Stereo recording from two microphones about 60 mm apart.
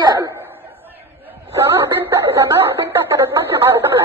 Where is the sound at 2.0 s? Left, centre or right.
Right.